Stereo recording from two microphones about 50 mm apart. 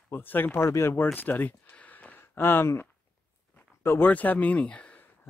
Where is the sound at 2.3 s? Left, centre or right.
Left.